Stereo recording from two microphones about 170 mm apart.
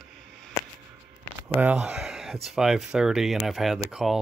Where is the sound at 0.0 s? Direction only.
Centre (ahead or behind).